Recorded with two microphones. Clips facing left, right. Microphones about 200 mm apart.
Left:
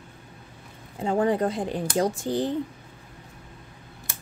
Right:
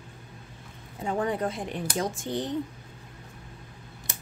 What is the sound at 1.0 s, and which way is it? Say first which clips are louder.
Speech: left 5 dB; 30° left (ahead or behind).